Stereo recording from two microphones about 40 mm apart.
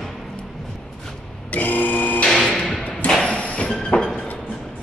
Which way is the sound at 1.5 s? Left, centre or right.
Left.